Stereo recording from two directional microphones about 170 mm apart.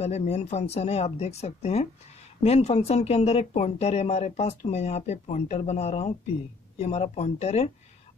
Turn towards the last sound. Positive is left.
turn(degrees=40)  # may be behind; listen again after turning